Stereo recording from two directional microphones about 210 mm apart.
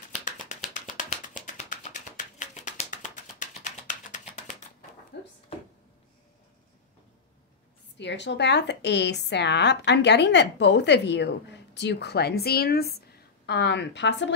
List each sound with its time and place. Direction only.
0.1 s music: 35° left (ahead or behind)
5.1 s a sound: 55° left (ahead or behind)
8.0 s a woman's voice: 55° left (ahead or behind)